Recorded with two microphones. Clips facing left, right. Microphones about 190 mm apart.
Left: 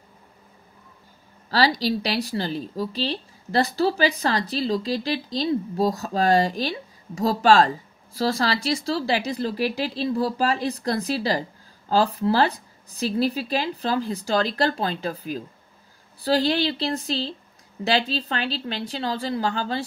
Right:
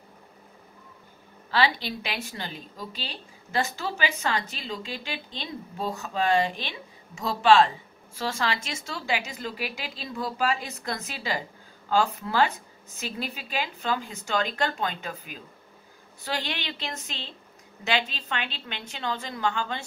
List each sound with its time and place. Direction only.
1.5 s a woman's voice: 40° left (ahead or behind)